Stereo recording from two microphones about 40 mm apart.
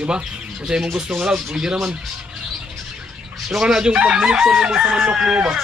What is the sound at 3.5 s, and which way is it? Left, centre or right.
Speech, centre.